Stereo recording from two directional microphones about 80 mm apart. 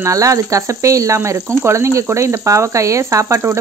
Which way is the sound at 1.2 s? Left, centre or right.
Right.